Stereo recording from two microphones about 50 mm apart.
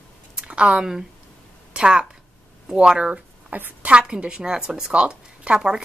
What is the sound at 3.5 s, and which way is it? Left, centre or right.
Speech, right.